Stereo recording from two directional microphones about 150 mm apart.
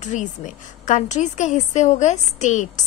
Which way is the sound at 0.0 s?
55° left (ahead or behind).